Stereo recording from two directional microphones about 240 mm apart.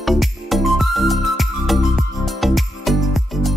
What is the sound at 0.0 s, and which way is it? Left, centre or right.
Music, centre.